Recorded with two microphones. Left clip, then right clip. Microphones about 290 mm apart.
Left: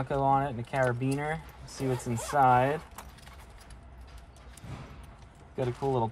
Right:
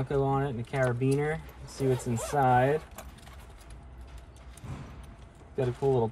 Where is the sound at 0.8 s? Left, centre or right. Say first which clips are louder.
Right 1 dB; centre.